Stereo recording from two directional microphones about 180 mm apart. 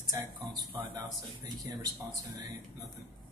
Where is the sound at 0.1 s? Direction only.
20° right (ahead or behind).